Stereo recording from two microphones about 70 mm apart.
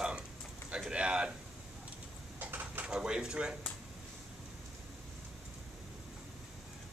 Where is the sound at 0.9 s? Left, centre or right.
Centre.